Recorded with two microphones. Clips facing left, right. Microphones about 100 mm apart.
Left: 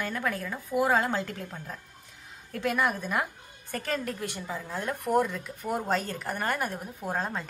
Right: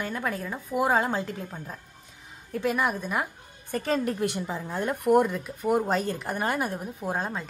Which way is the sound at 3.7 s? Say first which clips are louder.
Right 5 dB; 20° right (ahead or behind).